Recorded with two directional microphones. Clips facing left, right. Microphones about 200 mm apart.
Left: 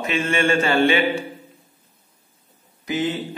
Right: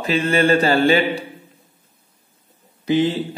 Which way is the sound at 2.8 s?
30° right (ahead or behind).